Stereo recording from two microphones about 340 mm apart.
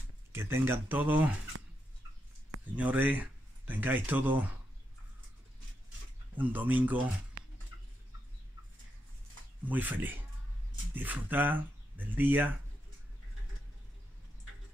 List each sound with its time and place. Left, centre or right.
0.3 s speech: centre
1.5 s a sound: right
2.7 s speech: centre
6.3 s speech: centre
9.7 s speech: centre